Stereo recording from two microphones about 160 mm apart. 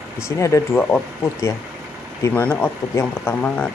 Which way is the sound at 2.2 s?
10° left (ahead or behind).